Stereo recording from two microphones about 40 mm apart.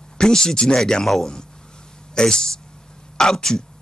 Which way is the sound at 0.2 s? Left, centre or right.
Centre.